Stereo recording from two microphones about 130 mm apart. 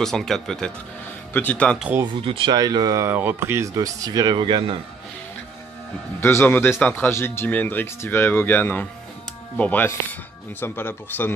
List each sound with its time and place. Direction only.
0.0 s speech: 5° left (ahead or behind)
2.2 s speech: 40° right (ahead or behind)
6.2 s speech: 15° left (ahead or behind)